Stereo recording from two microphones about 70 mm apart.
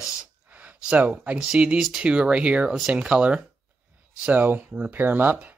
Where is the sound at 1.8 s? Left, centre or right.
Centre.